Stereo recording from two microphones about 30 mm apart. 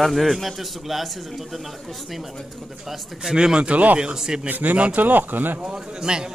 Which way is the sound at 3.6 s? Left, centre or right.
Right.